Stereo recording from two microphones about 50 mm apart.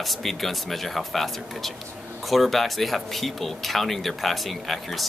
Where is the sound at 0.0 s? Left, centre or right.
Centre.